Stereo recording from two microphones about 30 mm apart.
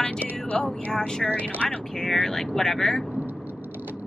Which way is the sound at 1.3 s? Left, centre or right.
Left.